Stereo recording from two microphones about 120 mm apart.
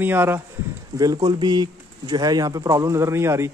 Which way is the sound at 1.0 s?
35° right (ahead or behind).